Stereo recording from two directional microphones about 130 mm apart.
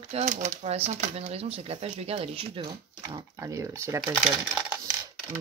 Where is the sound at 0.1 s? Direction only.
65° right (ahead or behind).